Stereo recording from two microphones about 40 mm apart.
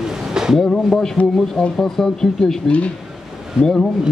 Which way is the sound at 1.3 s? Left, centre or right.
Centre.